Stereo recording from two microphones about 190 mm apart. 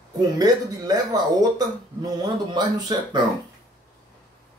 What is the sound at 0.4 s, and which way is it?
Speech, 20° right (ahead or behind).